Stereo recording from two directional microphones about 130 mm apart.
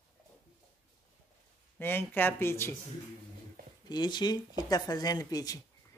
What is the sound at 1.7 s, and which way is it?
Speech, 15° left (ahead or behind).